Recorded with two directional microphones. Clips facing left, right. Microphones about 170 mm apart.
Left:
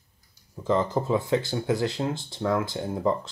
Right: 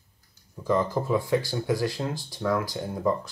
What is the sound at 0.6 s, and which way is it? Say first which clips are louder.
Speech: left 1 dB; 20° left (ahead or behind).